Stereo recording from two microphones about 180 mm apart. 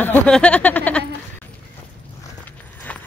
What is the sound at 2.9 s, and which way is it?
Clip-clop, 5° left (ahead or behind).